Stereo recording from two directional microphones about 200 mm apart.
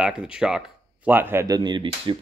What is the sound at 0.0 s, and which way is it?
Speech, 5° right (ahead or behind).